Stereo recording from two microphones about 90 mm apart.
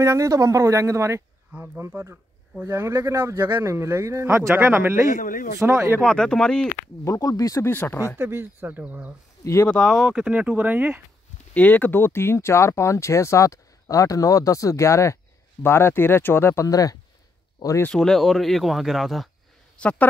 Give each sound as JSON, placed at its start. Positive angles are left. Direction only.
{"t": 0.0, "sound": "speech", "side_deg": -35}
{"t": 5.9, "sound": "speech", "side_deg": 10}
{"t": 7.1, "sound": "speech", "side_deg": 40}
{"t": 7.6, "sound": "speech", "side_deg": 25}
{"t": 8.2, "sound": "speech", "side_deg": -25}
{"t": 9.4, "sound": "speech", "side_deg": 35}
{"t": 9.8, "sound": "speech", "side_deg": 0}
{"t": 10.3, "sound": "speech", "side_deg": -15}
{"t": 11.5, "sound": "speech", "side_deg": 15}
{"t": 16.6, "sound": "speech", "side_deg": 40}
{"t": 17.9, "sound": "speech", "side_deg": 5}
{"t": 19.8, "sound": "speech", "side_deg": 15}